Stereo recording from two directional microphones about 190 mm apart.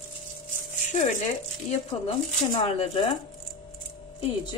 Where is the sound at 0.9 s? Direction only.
35° left (ahead or behind).